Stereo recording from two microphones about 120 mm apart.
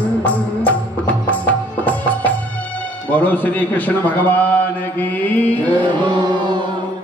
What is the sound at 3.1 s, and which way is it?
A man's voice, 15° left (ahead or behind).